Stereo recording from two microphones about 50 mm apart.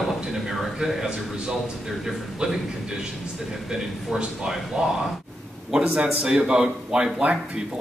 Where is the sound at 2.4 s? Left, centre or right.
Centre.